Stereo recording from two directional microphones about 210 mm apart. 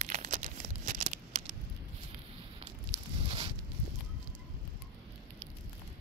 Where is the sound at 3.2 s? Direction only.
25° right (ahead or behind).